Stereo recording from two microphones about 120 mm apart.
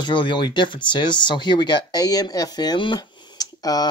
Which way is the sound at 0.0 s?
40° left (ahead or behind).